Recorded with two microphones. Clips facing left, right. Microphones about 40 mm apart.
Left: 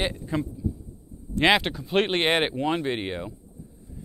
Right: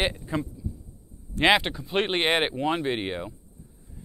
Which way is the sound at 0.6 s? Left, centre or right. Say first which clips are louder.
Left 7 dB; centre.